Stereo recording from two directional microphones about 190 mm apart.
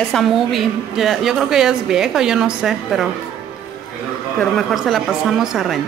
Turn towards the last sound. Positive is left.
turn(degrees=0)  # may be behind; listen again after turning